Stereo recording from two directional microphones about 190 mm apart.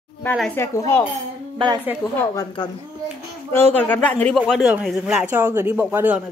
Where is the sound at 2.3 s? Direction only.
25° left (ahead or behind).